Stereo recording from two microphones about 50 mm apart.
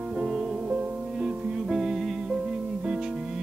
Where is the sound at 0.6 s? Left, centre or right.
Right.